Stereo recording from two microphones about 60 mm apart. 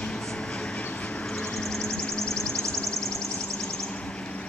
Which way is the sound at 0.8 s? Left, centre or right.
Left.